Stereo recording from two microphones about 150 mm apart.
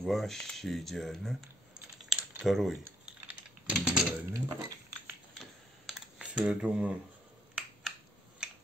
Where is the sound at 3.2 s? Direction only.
5° right (ahead or behind).